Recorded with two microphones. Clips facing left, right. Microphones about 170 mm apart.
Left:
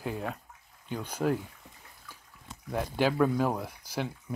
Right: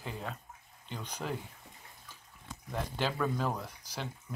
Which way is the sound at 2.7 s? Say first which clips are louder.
Left 7 dB; 10° left (ahead or behind).